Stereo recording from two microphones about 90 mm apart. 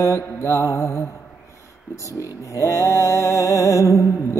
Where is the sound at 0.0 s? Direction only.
30° left (ahead or behind).